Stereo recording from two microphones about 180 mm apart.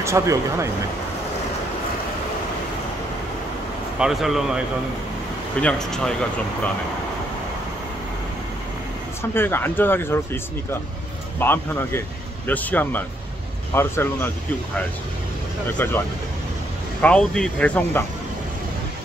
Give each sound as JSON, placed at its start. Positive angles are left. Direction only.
{"t": 0.0, "sound": "speech", "side_deg": -15}
{"t": 4.0, "sound": "speech", "side_deg": 0}
{"t": 9.3, "sound": "speech", "side_deg": 10}
{"t": 15.8, "sound": "speech", "side_deg": 10}
{"t": 17.0, "sound": "speech", "side_deg": 5}